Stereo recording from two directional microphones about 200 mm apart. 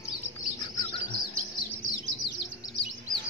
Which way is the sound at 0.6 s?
20° left (ahead or behind).